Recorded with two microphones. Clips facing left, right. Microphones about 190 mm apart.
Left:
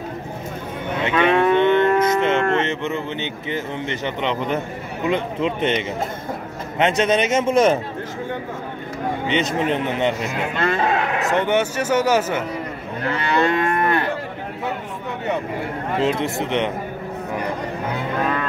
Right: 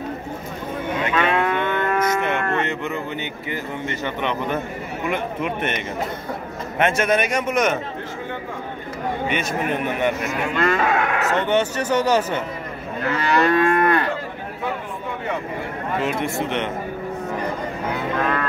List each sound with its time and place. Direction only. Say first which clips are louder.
1.0 s livestock: left 5 dB; 20° left (ahead or behind)
5.0 s speech: left 4 dB; 20° left (ahead or behind)
9.3 s speech: left 6 dB; 20° left (ahead or behind)
11.1 s speech: left 1 dB; 15° left (ahead or behind)
13.2 s speech: right 2 dB; 25° left (ahead or behind)
16.0 s speech: left 3 dB; 25° left (ahead or behind)